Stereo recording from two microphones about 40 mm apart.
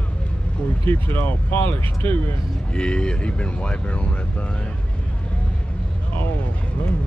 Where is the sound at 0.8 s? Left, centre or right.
Left.